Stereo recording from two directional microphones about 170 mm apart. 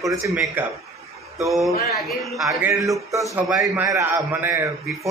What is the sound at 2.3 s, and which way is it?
Speech, centre (ahead or behind).